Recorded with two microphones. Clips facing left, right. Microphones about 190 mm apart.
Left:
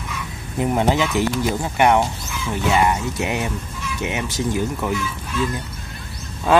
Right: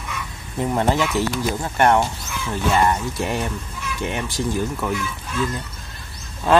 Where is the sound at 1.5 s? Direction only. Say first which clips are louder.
Even; 10° left (ahead or behind).